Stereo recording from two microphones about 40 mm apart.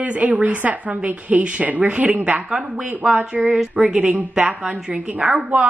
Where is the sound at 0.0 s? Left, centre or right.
Right.